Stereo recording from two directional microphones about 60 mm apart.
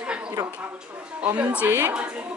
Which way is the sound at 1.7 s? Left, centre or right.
Right.